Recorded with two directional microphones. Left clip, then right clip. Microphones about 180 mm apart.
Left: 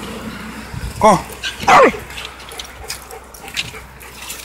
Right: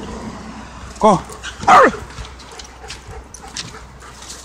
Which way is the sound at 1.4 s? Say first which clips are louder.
Right 1 dB; 20° right (ahead or behind).